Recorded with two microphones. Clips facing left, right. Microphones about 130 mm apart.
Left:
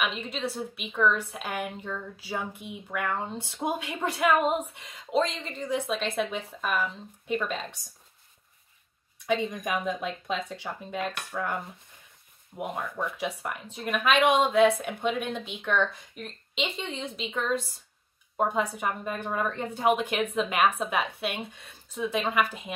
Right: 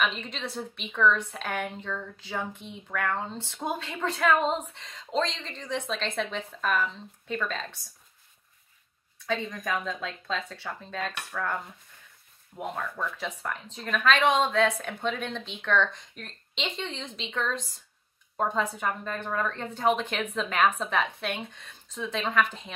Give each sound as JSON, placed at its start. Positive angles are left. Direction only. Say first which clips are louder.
{"t": 0.0, "sound": "a woman's voice", "louder": "even", "side_deg": 5}
{"t": 9.2, "sound": "a woman's voice", "louder": "left 3 dB", "side_deg": 15}